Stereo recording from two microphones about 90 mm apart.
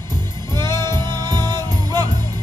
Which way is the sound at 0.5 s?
50° right (ahead or behind).